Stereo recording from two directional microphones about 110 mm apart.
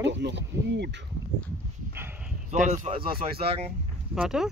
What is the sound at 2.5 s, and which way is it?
Speech, 90° right.